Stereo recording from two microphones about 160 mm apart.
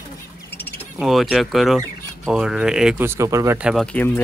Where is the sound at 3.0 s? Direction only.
20° right (ahead or behind).